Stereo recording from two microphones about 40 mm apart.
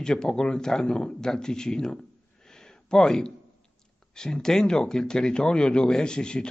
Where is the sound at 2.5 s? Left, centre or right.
Centre.